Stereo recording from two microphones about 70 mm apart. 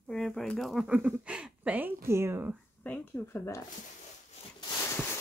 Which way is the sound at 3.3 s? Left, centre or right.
Left.